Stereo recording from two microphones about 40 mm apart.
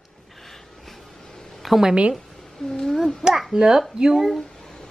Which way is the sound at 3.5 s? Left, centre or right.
Centre.